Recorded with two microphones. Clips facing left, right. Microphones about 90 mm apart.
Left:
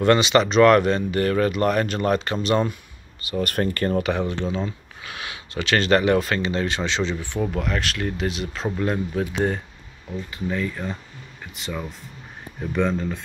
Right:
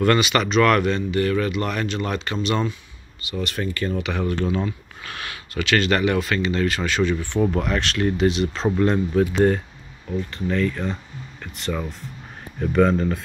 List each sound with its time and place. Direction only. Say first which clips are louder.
0.0 s speech: left 2 dB; 25° left (ahead or behind); by 4.1 s 50° left (ahead or behind)
4.1 s speech: even; 25° left (ahead or behind)
5.0 s a sound: right 1 dB; 15° left (ahead or behind)
5.5 s speech: left 1 dB; 30° left (ahead or behind)
7.5 s speech: right 3 dB; centre (ahead or behind)